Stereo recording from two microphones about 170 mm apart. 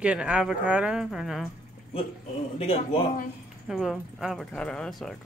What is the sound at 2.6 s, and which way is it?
Speech, 35° left (ahead or behind).